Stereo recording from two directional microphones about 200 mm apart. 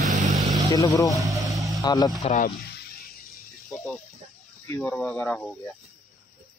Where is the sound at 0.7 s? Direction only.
15° left (ahead or behind).